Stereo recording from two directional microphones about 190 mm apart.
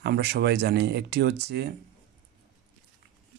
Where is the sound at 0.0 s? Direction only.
60° right (ahead or behind).